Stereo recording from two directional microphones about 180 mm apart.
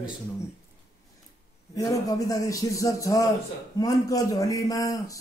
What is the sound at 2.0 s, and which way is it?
A man's voice, 20° left (ahead or behind).